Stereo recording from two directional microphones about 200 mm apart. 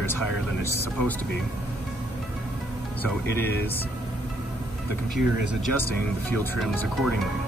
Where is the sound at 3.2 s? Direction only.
50° right (ahead or behind).